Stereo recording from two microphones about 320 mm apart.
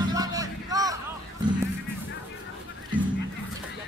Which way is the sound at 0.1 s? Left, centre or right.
Centre.